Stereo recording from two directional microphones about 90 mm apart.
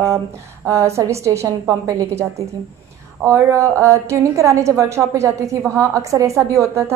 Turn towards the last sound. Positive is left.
turn(degrees=-30)  # may be behind; listen again after turning